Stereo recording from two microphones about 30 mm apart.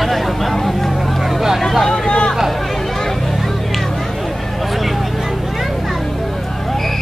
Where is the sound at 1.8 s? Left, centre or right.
Centre.